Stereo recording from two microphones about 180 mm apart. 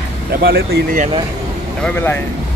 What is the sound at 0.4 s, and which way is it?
Speech, 60° right (ahead or behind).